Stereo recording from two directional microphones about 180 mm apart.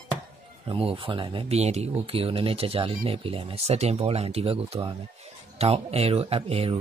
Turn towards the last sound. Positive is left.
turn(degrees=-30)  # may be behind; listen again after turning